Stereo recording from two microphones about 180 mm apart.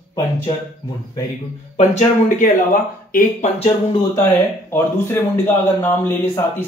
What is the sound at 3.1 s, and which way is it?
Speech, 35° left (ahead or behind).